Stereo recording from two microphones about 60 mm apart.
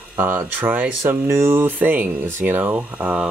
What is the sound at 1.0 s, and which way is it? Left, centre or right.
Speech, right.